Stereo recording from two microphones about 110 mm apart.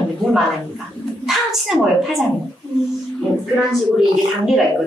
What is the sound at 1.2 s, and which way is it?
A woman's voice, centre (ahead or behind).